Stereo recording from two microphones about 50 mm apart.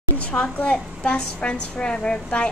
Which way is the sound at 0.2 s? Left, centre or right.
Left.